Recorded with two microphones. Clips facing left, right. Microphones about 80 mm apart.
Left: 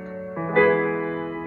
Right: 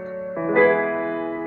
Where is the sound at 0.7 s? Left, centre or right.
Right.